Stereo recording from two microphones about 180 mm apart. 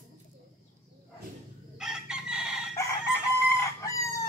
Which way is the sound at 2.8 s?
15° left (ahead or behind).